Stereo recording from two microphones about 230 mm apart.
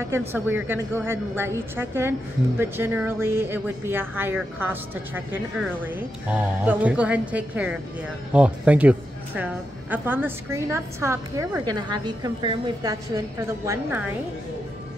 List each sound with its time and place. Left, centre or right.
0.3 s a woman's voice: centre